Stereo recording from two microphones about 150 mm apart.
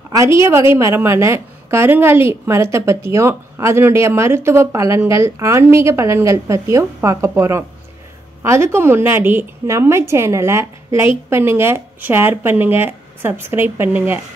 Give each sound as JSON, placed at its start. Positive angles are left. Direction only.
{"t": 0.1, "sound": "a woman's voice", "side_deg": -20}